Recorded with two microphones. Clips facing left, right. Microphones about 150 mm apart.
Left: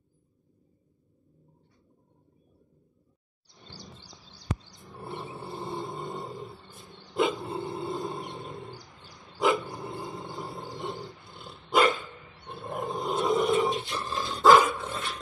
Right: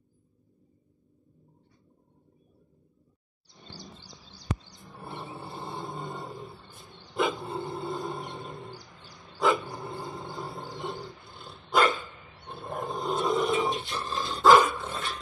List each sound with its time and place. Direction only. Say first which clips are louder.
4.7 s a sound: left 2 dB; centre (ahead or behind)
7.2 s dog: left 1 dB; centre (ahead or behind)
8.2 s a sound: even; centre (ahead or behind)
8.5 s bird: left 1 dB; 25° left (ahead or behind)
9.5 s dog: even; centre (ahead or behind)
10.8 s roar: even; centre (ahead or behind)
11.7 s dog: left 1 dB; centre (ahead or behind)
12.4 s roaring cats: left 1 dB; centre (ahead or behind)
13.8 s dog: even; centre (ahead or behind)